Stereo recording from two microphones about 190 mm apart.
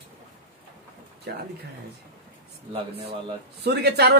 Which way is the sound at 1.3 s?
55° right (ahead or behind).